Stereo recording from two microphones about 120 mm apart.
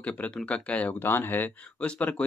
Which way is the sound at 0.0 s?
10° left (ahead or behind).